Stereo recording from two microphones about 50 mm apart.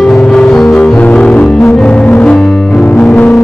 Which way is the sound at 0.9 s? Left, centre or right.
Left.